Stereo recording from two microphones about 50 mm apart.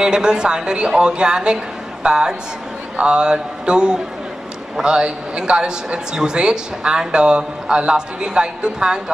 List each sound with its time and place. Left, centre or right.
0.0 s a man's voice: centre